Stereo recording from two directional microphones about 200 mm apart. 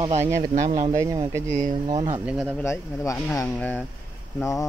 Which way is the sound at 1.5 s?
40° right (ahead or behind).